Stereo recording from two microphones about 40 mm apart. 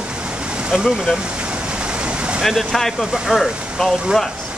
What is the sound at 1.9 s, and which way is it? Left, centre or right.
Vehicle, right.